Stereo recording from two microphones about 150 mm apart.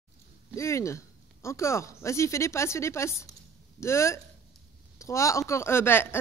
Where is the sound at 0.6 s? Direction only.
20° left (ahead or behind).